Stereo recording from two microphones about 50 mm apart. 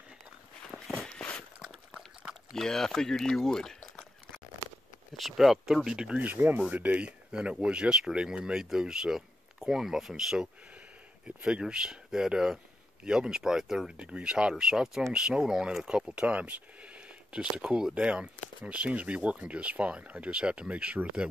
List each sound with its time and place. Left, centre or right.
1.6 s a sound: centre
2.5 s speech: centre
5.1 s speech: centre
5.9 s speech: centre
6.2 s speech: right
6.7 s speech: right; by 10.5 s centre
11.2 s speech: right
16.2 s speech: right